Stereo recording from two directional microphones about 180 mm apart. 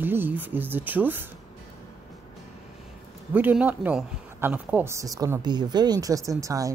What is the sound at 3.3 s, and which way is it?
Speech, 10° right (ahead or behind).